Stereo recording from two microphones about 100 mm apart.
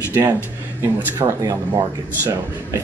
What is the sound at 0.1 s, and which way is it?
Speech, 20° right (ahead or behind).